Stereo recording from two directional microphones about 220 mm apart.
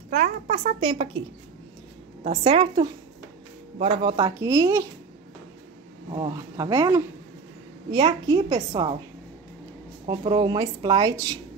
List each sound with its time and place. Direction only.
0.1 s speech: 30° right (ahead or behind)
2.2 s speech: 25° right (ahead or behind)
6.1 s speech: 20° right (ahead or behind)
10.0 s speech: 20° right (ahead or behind)